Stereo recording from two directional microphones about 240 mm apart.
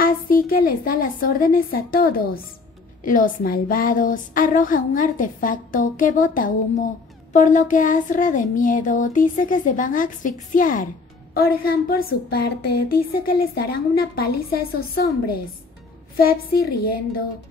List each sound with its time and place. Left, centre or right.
0.0 s a woman's voice: left
16.2 s a woman's voice: left